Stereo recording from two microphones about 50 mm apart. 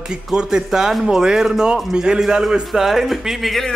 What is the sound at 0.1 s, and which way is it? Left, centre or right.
Speech, centre.